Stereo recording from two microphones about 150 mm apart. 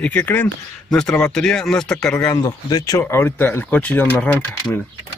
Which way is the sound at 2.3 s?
20° left (ahead or behind).